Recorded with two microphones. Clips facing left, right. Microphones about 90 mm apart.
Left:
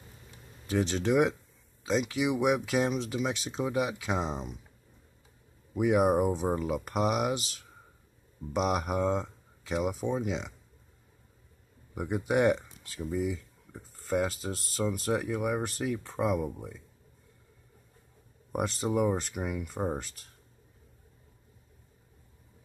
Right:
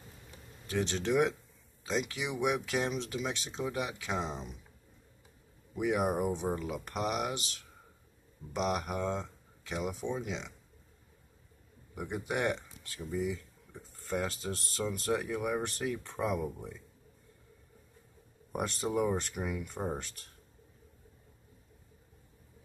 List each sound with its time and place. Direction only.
0.8 s speech: 5° left (ahead or behind)
5.8 s speech: 10° left (ahead or behind)
8.5 s speech: 10° left (ahead or behind)
11.9 s speech: 15° left (ahead or behind)
13.0 s speech: centre (ahead or behind)
18.5 s speech: centre (ahead or behind)